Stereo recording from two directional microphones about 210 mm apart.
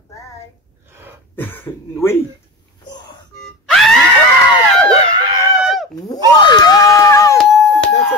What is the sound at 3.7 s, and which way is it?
Screaming, centre (ahead or behind).